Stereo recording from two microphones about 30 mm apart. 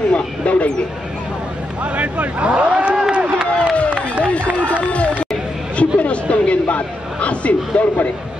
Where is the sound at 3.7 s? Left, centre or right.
Left.